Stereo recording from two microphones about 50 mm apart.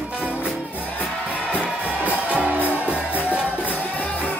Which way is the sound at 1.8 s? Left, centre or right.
Right.